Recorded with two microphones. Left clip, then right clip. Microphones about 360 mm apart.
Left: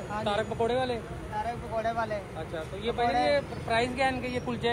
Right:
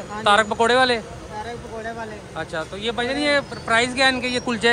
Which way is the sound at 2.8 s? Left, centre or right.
Right.